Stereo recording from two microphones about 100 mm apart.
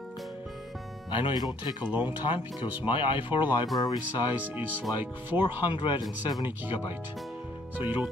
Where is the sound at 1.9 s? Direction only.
15° right (ahead or behind).